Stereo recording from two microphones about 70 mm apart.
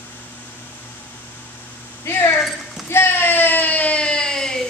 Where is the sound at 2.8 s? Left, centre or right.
Left; by 4.6 s centre.